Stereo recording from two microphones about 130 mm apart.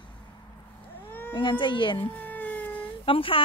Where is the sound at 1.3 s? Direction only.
40° left (ahead or behind).